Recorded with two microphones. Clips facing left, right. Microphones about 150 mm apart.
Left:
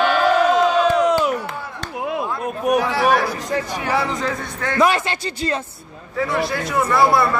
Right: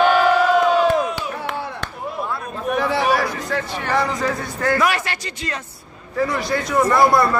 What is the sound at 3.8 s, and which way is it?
Speech, 5° left (ahead or behind).